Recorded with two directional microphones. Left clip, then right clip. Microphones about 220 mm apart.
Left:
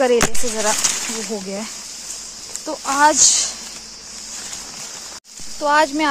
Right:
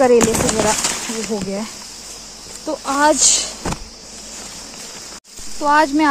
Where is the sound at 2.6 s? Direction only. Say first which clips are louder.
Even; 15° left (ahead or behind).